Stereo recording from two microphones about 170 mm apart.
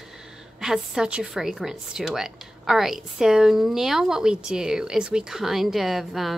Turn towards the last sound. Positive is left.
turn(degrees=0)  # may be behind; listen again after turning